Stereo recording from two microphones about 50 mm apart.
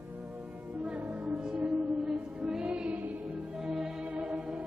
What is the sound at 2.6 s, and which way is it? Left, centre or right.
Music, right.